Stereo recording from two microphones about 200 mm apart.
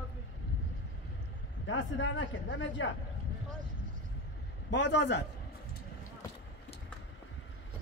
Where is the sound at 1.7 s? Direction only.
70° left (ahead or behind).